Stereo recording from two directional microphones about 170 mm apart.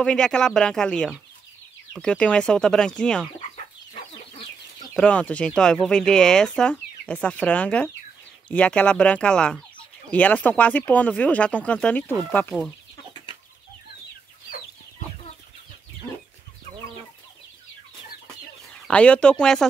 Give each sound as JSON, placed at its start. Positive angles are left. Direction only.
{"t": 0.0, "sound": "speech", "side_deg": 5}
{"t": 3.3, "sound": "chicken", "side_deg": 35}
{"t": 4.9, "sound": "speech", "side_deg": 5}
{"t": 18.7, "sound": "speech", "side_deg": 5}